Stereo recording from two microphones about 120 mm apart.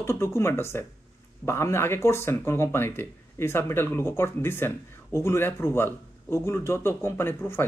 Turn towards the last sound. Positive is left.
turn(degrees=20)  # may be behind; listen again after turning